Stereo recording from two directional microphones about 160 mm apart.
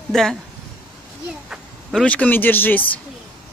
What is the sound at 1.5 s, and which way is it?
Speech, 5° left (ahead or behind).